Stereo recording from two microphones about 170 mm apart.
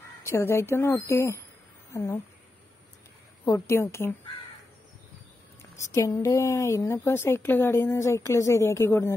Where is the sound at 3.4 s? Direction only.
15° left (ahead or behind).